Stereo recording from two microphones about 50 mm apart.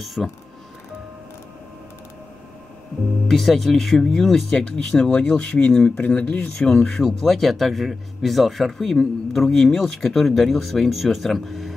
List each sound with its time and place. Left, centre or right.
0.0 s a man's voice: centre
3.3 s speech: centre
5.4 s speech: left
6.6 s a man's voice: centre